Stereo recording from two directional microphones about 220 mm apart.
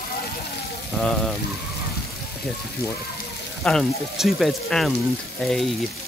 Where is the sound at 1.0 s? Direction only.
5° left (ahead or behind).